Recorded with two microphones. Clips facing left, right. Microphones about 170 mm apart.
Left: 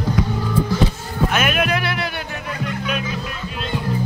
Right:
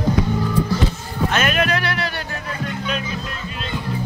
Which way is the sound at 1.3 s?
5° left (ahead or behind).